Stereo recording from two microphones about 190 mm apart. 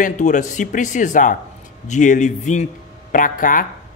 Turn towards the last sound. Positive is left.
turn(degrees=45)  # may be behind; listen again after turning